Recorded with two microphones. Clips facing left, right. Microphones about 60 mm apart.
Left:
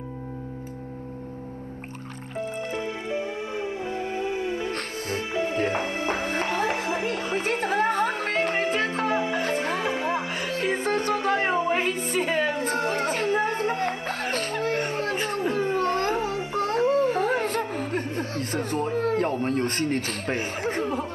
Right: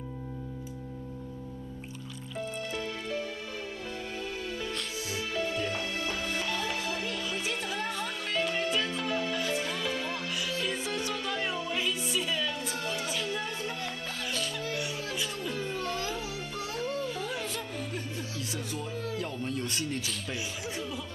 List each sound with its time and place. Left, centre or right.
2.8 s music: left
4.6 s music: left
5.3 s music: left
10.3 s music: left
17.0 s a sound: left